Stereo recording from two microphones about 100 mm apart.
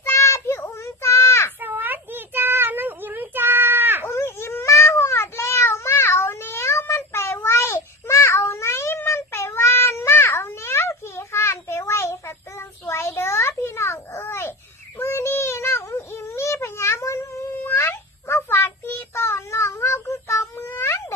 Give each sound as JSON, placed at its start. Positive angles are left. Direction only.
{"t": 0.0, "sound": "child singing", "side_deg": 30}
{"t": 1.6, "sound": "child singing", "side_deg": -20}
{"t": 4.1, "sound": "cat", "side_deg": 25}
{"t": 15.0, "sound": "synthetic singing", "side_deg": 25}